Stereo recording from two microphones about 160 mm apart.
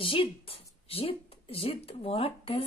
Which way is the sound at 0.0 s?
35° left (ahead or behind).